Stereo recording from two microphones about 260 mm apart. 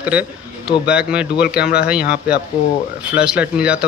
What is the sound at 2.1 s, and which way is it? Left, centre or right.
Speech, left.